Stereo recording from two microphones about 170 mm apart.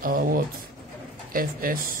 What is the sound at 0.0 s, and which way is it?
Speech, 55° right (ahead or behind).